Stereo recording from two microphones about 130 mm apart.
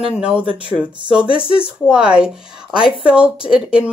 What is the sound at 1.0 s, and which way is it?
Speech, 10° right (ahead or behind).